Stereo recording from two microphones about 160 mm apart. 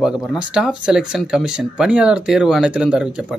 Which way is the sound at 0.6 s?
5° right (ahead or behind).